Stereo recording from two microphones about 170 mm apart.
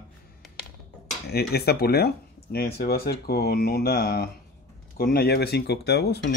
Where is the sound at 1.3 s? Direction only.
70° left (ahead or behind).